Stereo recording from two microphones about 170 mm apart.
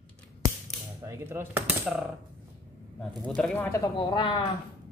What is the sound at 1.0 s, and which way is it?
Speech, 15° right (ahead or behind).